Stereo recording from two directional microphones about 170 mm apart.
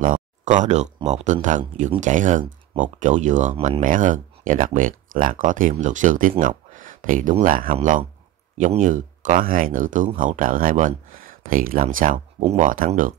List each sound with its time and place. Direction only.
0.0 s speech: 50° right (ahead or behind)
3.5 s speech: 35° right (ahead or behind)
3.8 s speech: 50° right (ahead or behind)
6.4 s a sound: 50° right (ahead or behind)
7.4 s speech: 55° right (ahead or behind)